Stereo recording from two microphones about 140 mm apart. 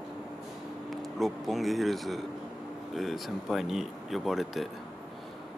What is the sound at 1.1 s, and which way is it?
Speech, centre (ahead or behind).